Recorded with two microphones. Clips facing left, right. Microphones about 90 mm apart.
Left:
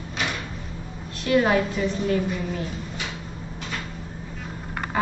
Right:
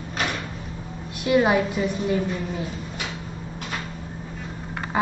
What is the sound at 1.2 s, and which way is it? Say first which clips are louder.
Speech: right 1 dB; 15° right (ahead or behind).